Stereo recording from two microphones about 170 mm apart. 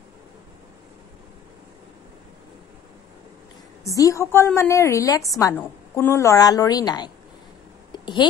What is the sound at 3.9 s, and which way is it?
A woman's voice, 20° left (ahead or behind).